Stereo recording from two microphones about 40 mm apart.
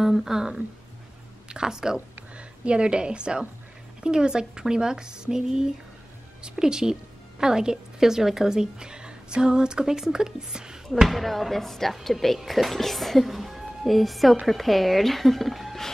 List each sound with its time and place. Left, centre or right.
0.0 s speech: centre
2.3 s a woman's voice: right
11.1 s speech: centre